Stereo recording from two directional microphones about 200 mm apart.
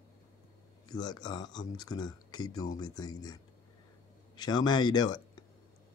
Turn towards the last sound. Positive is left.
turn(degrees=20)  # may be behind; listen again after turning